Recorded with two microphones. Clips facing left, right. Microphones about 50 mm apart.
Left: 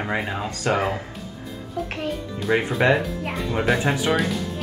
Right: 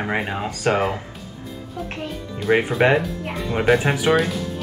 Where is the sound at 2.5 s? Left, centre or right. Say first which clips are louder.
Right 2 dB; centre.